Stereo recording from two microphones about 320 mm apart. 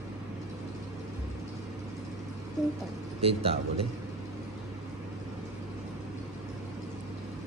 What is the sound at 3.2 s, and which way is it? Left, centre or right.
Speech, centre.